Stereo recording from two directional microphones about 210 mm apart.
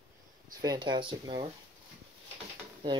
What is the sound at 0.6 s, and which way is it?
Speech, 20° right (ahead or behind).